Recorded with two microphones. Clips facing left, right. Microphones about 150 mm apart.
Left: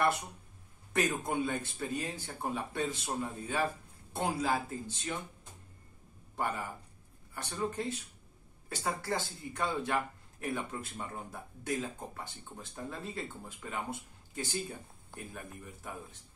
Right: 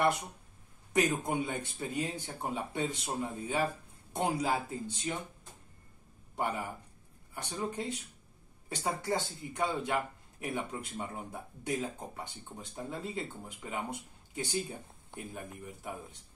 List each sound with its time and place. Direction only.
0.9 s speech: 15° right (ahead or behind)
6.3 s speech: 15° right (ahead or behind)